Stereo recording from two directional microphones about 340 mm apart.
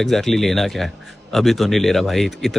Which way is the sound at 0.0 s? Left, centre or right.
Centre.